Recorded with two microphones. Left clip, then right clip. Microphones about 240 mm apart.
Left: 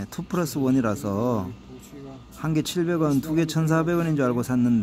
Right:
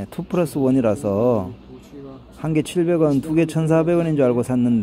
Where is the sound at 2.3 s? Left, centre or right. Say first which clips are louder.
Right 5 dB; centre.